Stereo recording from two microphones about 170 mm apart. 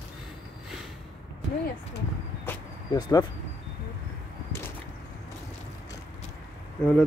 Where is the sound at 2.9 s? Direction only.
25° left (ahead or behind).